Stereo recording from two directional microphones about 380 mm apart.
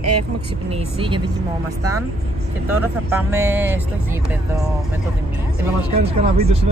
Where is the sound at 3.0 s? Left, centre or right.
Centre.